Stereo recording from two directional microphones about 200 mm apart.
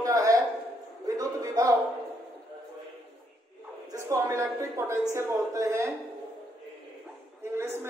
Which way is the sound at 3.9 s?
15° right (ahead or behind).